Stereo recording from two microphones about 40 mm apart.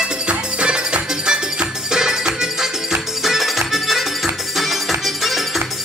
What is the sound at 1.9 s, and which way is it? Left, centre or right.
Music, centre.